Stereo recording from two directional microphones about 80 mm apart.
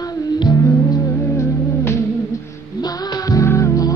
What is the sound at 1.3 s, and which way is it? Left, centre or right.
Music, left.